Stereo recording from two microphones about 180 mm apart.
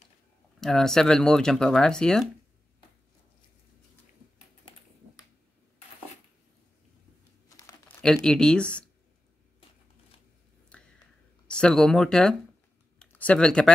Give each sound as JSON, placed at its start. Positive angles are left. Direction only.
{"t": 0.6, "sound": "speech", "side_deg": 0}
{"t": 7.4, "sound": "crumpling", "side_deg": 15}
{"t": 8.0, "sound": "speech", "side_deg": 5}
{"t": 10.7, "sound": "a sound", "side_deg": 5}
{"t": 11.5, "sound": "speech", "side_deg": 5}